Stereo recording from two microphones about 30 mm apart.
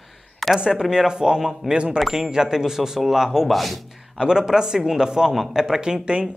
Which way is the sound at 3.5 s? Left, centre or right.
Centre.